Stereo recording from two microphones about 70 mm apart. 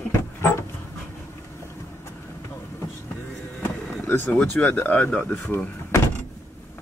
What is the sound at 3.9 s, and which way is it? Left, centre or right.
Vehicle, left.